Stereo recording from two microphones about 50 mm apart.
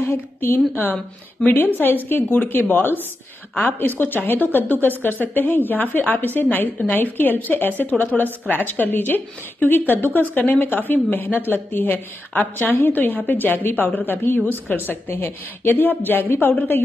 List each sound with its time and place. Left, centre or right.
0.4 s a woman's voice: left
8.1 s speech: centre
8.6 s a woman's voice: left